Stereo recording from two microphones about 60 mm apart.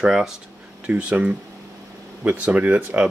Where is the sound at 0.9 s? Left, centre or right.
Right.